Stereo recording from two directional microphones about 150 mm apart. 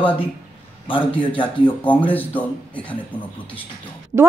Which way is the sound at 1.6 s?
10° left (ahead or behind).